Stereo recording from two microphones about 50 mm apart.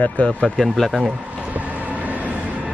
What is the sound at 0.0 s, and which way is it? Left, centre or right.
Speech, left.